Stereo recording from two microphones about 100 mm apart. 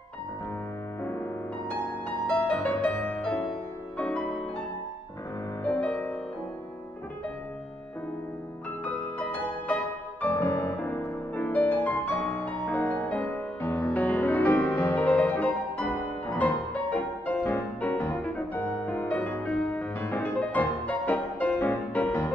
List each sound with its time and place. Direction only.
2.2 s music: 15° left (ahead or behind)
8.8 s music: 15° left (ahead or behind)
10.4 s music: 35° left (ahead or behind)
10.8 s music: 15° left (ahead or behind)
13.6 s music: 30° left (ahead or behind)